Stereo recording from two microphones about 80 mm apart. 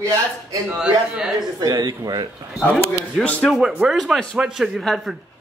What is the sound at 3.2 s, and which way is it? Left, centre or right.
Speech, centre.